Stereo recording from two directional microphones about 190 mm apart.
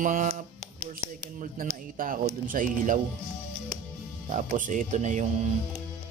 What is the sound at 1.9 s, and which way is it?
Speech, 45° right (ahead or behind).